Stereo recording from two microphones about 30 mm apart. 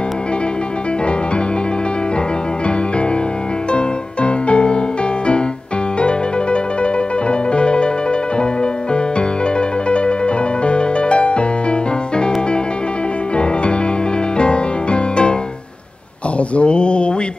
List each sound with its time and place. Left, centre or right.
3.7 s music: left
9.6 s music: left
14.3 s music: left
16.3 s a sound: left